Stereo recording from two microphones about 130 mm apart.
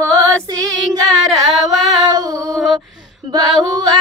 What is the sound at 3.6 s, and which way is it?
Female singing, 30° right (ahead or behind).